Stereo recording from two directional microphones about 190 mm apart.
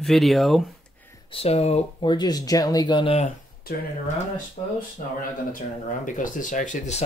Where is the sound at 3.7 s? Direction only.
50° left (ahead or behind).